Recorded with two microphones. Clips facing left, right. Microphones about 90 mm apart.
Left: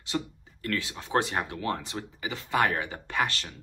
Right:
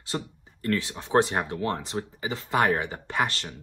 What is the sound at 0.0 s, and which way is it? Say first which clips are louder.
Speech: left 1 dB; 30° right (ahead or behind).